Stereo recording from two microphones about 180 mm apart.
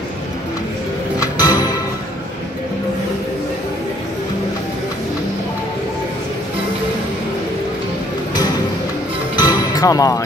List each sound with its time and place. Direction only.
1.2 s music: 20° left (ahead or behind)
9.4 s music: 20° left (ahead or behind)